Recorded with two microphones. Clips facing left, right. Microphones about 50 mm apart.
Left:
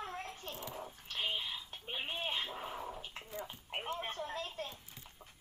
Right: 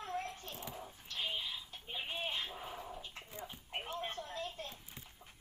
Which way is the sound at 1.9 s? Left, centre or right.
Left.